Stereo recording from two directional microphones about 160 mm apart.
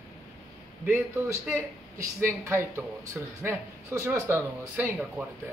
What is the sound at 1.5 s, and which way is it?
Speech, 15° right (ahead or behind).